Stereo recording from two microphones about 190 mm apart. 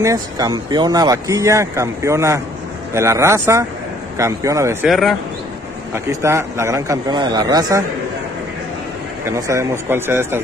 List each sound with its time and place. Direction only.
0.0 s speech: 20° right (ahead or behind)
4.8 s speech: centre (ahead or behind)
6.0 s speech: 15° right (ahead or behind)
9.3 s speech: 15° right (ahead or behind)